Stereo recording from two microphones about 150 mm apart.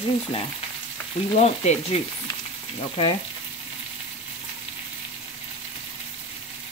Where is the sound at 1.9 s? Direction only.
40° left (ahead or behind).